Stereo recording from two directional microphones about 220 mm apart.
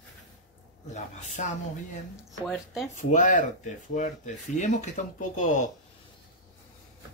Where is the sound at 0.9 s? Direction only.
35° left (ahead or behind).